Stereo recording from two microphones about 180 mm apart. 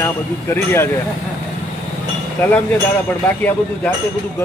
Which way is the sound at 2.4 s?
10° left (ahead or behind).